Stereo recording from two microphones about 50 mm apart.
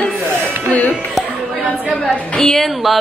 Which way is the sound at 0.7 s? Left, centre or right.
Left.